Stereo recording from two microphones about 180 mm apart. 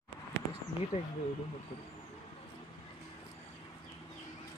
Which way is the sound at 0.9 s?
30° left (ahead or behind).